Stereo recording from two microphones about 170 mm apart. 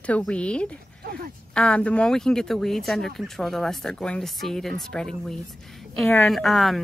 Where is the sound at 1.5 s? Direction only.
5° left (ahead or behind).